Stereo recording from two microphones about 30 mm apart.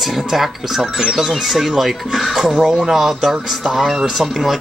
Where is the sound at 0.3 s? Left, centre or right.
Centre.